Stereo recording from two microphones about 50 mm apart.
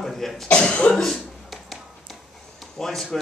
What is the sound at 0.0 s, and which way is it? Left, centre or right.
Cough, centre.